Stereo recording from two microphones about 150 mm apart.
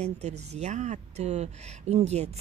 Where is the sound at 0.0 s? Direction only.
45° right (ahead or behind).